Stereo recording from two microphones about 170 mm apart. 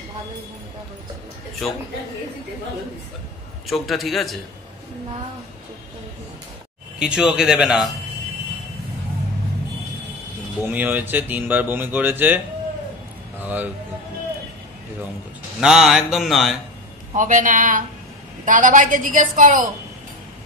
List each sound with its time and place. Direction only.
3.6 s mantra: centre (ahead or behind)
7.0 s mantra: 5° right (ahead or behind)
10.6 s speech: 10° right (ahead or behind)
13.4 s music: 10° right (ahead or behind)
15.6 s mantra: centre (ahead or behind)
17.1 s a woman's voice: 50° right (ahead or behind)